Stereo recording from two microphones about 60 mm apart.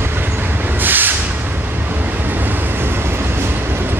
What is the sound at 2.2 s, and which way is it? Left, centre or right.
Train, right.